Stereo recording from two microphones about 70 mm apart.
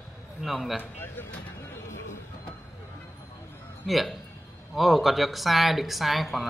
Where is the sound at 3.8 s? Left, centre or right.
Centre.